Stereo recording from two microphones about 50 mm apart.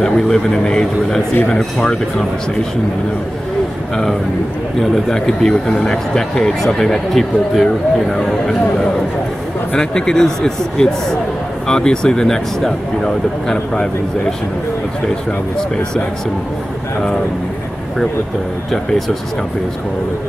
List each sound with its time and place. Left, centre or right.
0.0 s speech: centre
5.1 s speech: centre
9.8 s speech: centre
18.7 s speech: centre